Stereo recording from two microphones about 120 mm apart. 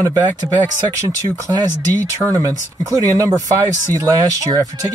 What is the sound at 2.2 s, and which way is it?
Speech, 25° right (ahead or behind).